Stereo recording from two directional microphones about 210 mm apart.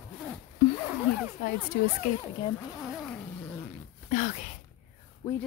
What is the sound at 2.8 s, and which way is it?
Cat, centre (ahead or behind).